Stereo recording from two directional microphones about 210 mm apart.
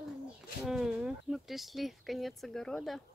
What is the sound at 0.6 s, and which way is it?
Speech, centre (ahead or behind).